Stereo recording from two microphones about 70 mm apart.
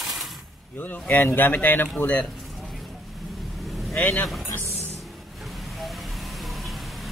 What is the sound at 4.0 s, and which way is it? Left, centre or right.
Speech, left.